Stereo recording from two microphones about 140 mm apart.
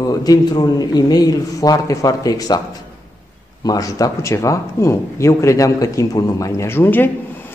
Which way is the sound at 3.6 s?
25° left (ahead or behind).